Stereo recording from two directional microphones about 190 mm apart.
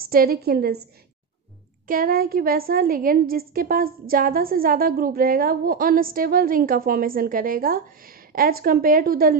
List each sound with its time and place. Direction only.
0.1 s a woman's voice: 50° right (ahead or behind)
1.9 s a woman's voice: 50° right (ahead or behind)